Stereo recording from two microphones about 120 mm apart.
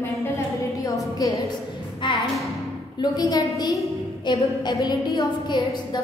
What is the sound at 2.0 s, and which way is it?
A woman's voice, 40° left (ahead or behind).